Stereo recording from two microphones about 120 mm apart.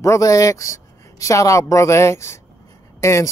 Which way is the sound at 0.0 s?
25° left (ahead or behind).